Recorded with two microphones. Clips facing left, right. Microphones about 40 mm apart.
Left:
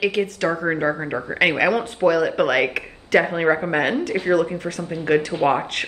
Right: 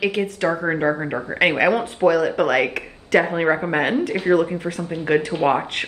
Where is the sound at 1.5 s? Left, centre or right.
Right.